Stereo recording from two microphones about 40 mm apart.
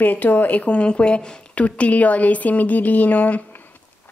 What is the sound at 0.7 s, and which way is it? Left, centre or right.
A woman's voice, left.